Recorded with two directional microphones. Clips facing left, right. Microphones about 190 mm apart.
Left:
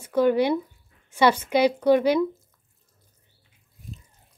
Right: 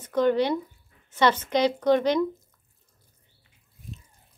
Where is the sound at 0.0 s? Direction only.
10° left (ahead or behind).